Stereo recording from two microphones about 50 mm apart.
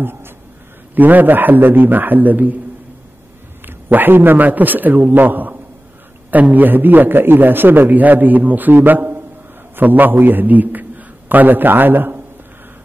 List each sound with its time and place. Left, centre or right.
0.0 s a man's voice: right
3.6 s a man's voice: right